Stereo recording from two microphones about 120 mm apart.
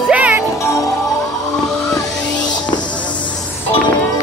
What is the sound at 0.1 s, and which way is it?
Music, 10° right (ahead or behind).